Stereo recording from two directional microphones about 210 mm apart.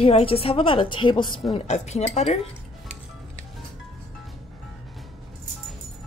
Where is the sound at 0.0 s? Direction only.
25° left (ahead or behind).